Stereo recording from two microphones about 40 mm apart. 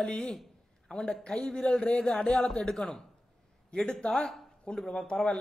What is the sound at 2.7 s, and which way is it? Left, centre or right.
Speech, centre.